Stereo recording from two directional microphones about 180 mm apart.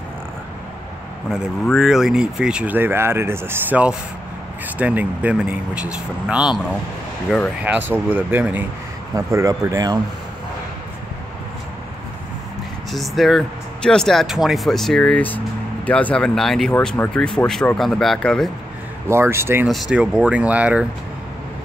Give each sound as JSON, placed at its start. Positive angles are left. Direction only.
{"t": 1.3, "sound": "speech", "side_deg": -5}
{"t": 7.6, "sound": "speech", "side_deg": -10}
{"t": 12.9, "sound": "speech", "side_deg": 0}
{"t": 19.0, "sound": "speech", "side_deg": -15}
{"t": 19.7, "sound": "speech", "side_deg": 0}